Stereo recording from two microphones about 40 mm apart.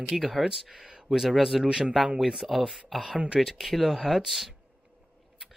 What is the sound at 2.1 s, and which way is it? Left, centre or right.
Speech, right.